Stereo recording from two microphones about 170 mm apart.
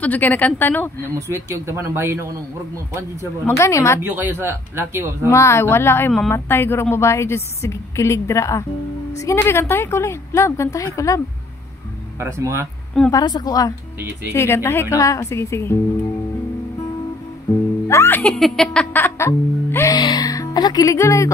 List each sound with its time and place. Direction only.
0.0 s speech: 10° left (ahead or behind)
1.1 s speech: 15° right (ahead or behind)
3.4 s speech: 15° left (ahead or behind)
4.0 s speech: 10° right (ahead or behind)
5.3 s speech: 15° left (ahead or behind)
12.2 s speech: 15° right (ahead or behind)
13.1 s speech: 25° left (ahead or behind)
13.9 s speech: 10° right (ahead or behind)
14.3 s speech: 15° left (ahead or behind)
17.8 s speech: 15° left (ahead or behind)